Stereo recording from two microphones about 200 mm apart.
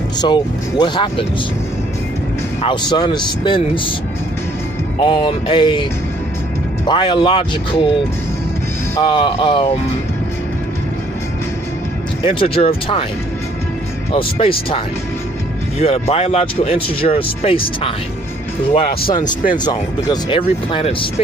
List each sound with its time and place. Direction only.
0.2 s speech: 20° left (ahead or behind)
2.6 s speech: 20° left (ahead or behind)
5.0 s speech: 25° left (ahead or behind)
6.9 s speech: 25° left (ahead or behind)
8.9 s speech: 20° left (ahead or behind)
12.3 s speech: 25° left (ahead or behind)
14.1 s speech: 25° left (ahead or behind)
15.8 s speech: 30° left (ahead or behind)
19.5 s speech: 20° left (ahead or behind)